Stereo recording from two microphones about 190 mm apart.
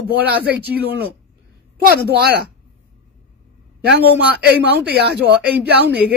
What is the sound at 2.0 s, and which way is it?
Speech, 55° right (ahead or behind).